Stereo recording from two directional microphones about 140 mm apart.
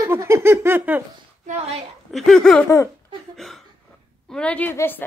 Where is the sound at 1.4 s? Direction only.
55° right (ahead or behind).